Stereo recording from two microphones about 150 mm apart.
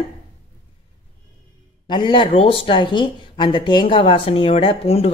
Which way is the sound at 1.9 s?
30° left (ahead or behind).